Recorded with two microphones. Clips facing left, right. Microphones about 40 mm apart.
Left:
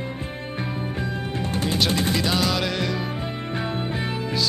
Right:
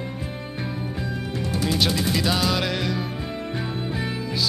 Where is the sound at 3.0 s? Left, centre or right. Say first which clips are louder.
Left 1 dB; left.